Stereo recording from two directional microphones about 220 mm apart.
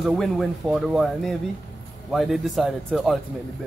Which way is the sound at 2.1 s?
Centre (ahead or behind).